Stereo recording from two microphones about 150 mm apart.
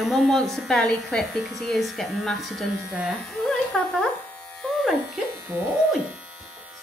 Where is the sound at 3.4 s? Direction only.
5° left (ahead or behind).